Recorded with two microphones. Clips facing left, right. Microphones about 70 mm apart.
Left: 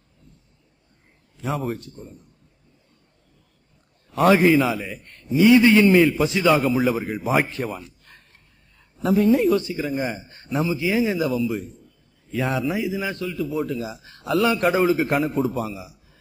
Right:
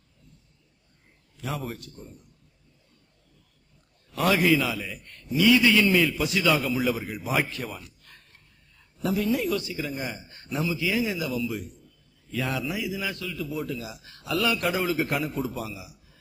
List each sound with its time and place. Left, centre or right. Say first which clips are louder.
1.8 s speech: left 4 dB; left
4.1 s a man's voice: left 6 dB; left